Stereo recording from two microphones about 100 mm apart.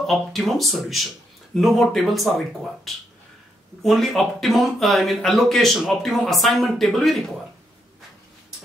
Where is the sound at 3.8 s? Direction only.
Centre (ahead or behind).